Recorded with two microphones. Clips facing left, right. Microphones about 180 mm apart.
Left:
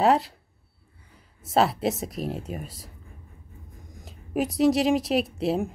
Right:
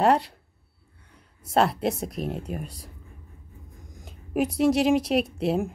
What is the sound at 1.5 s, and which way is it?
Speech, centre (ahead or behind).